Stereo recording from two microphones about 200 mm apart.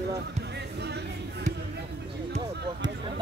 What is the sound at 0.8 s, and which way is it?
Speech, 55° right (ahead or behind).